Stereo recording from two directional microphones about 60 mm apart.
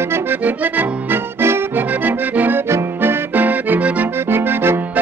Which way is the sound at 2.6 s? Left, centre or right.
Right.